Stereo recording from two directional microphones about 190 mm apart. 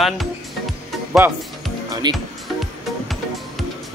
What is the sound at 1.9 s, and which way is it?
Music, 20° right (ahead or behind).